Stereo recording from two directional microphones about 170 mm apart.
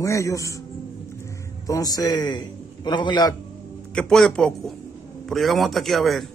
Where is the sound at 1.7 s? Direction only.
20° left (ahead or behind).